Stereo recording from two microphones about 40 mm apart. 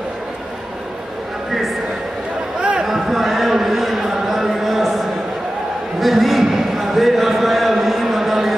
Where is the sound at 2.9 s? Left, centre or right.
Centre.